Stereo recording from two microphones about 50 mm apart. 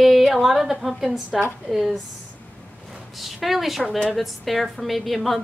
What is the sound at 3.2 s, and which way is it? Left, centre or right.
A woman's voice, centre.